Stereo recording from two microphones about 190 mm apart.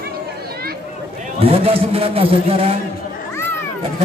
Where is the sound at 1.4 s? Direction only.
30° right (ahead or behind).